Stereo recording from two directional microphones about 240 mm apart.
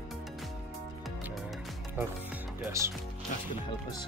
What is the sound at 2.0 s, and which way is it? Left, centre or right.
Music, centre.